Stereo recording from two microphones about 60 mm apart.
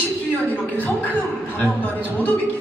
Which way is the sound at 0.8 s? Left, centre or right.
Left.